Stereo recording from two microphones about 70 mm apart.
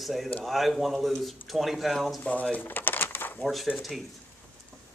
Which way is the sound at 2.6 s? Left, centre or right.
Left.